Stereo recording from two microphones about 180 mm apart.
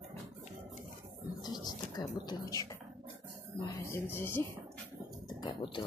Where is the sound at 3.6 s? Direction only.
15° left (ahead or behind).